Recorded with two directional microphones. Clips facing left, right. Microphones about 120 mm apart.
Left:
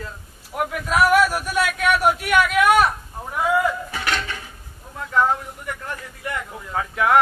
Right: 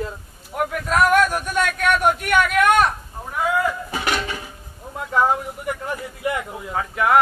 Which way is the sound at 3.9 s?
10° right (ahead or behind).